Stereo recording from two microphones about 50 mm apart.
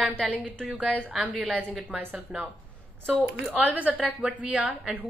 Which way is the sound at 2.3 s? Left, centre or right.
Right.